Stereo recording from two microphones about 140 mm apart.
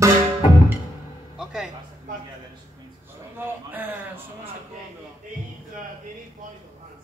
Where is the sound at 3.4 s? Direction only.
15° right (ahead or behind).